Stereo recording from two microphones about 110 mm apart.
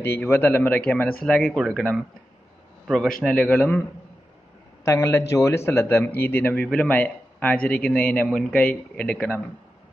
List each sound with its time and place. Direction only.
0.0 s a man's voice: 20° left (ahead or behind)
4.8 s a man's voice: 25° left (ahead or behind)